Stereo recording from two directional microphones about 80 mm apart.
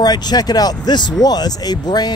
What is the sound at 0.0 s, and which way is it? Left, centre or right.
Speech, left.